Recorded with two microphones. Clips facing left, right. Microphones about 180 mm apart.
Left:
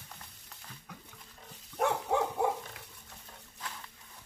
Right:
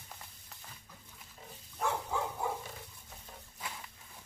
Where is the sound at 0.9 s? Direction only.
70° left (ahead or behind).